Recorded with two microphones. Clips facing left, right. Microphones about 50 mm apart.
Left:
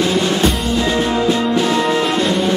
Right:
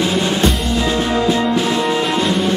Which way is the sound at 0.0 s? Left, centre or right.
Centre.